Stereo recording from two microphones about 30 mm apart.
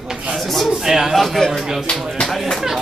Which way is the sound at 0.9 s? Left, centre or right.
Centre.